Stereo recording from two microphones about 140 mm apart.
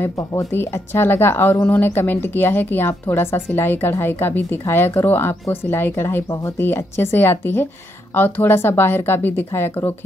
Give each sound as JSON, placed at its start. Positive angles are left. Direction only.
{"t": 0.0, "sound": "speech", "side_deg": 20}